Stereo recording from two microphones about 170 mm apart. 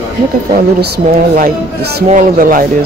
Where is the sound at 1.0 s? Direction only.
45° right (ahead or behind).